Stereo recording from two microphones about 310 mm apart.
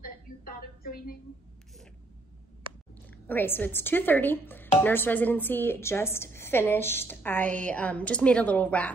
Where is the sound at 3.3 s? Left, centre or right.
Centre.